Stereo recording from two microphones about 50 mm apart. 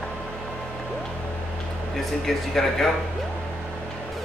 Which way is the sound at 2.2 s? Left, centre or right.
Centre.